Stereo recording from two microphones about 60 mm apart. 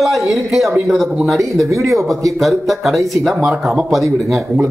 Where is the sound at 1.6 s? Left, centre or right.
Right.